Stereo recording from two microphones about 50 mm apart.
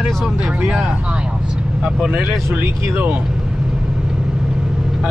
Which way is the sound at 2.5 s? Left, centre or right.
Right.